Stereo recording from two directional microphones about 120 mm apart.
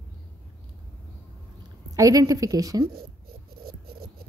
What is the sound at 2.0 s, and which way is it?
Speech, 30° right (ahead or behind).